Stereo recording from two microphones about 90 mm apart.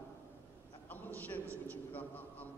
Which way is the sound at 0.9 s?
20° left (ahead or behind).